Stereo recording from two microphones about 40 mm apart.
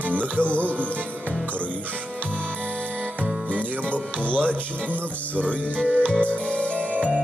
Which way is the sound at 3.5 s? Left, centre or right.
Left.